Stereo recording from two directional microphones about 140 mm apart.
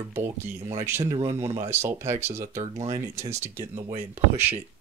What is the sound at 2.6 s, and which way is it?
Speech, 50° right (ahead or behind).